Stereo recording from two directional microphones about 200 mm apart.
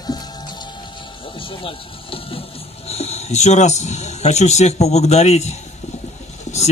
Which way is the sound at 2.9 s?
30° left (ahead or behind).